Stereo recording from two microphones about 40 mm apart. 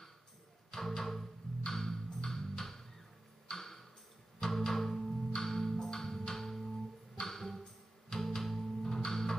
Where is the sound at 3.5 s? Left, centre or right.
Centre.